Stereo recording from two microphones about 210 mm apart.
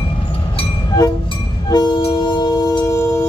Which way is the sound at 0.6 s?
15° left (ahead or behind).